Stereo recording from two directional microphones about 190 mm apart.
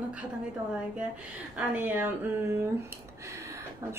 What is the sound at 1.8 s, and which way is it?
Speech, 10° right (ahead or behind).